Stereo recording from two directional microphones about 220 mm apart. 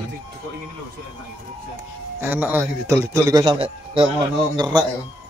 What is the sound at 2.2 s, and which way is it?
A man's voice, 10° right (ahead or behind).